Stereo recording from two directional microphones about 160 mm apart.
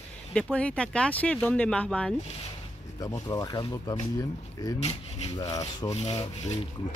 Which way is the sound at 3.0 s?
20° left (ahead or behind).